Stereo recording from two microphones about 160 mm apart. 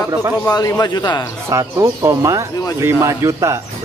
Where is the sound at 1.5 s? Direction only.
20° right (ahead or behind).